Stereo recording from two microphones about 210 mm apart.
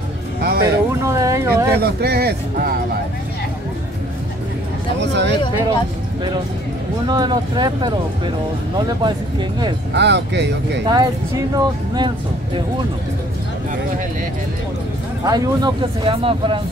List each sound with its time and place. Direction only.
0.4 s speech: 50° right (ahead or behind)
0.9 s a sound: 15° right (ahead or behind)
1.8 s speech: 50° right (ahead or behind)
5.0 s speech: 55° right (ahead or behind)
7.1 s speech: 20° right (ahead or behind)
9.9 s speech: 55° right (ahead or behind)
10.9 s speech: 20° right (ahead or behind)
15.2 s speech: 20° right (ahead or behind)